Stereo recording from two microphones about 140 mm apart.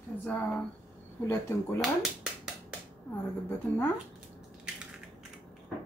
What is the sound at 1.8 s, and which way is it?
Speech, 5° right (ahead or behind).